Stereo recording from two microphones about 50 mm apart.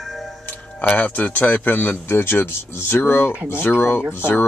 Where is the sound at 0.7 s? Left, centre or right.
Left.